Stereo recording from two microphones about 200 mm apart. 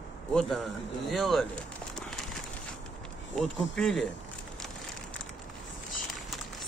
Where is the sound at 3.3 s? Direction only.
5° left (ahead or behind).